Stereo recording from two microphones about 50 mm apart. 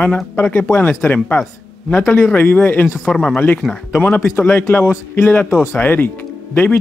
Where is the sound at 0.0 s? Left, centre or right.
Left.